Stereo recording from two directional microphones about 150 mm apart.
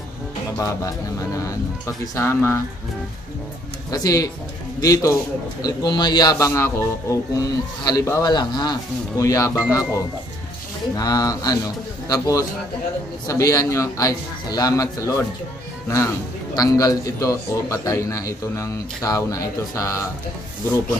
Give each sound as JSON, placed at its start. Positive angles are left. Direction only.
{"t": 0.6, "sound": "a man's voice", "side_deg": 20}
{"t": 3.9, "sound": "a man's voice", "side_deg": 25}
{"t": 16.5, "sound": "a man's voice", "side_deg": 25}